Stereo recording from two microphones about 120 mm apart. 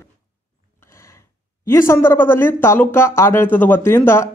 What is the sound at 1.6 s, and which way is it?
Speech, 20° left (ahead or behind).